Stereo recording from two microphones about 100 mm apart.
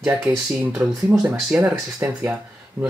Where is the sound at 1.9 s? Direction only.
25° right (ahead or behind).